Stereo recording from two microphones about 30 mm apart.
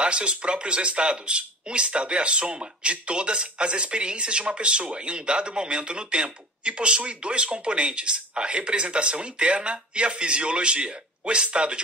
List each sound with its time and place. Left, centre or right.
0.0 s speech: right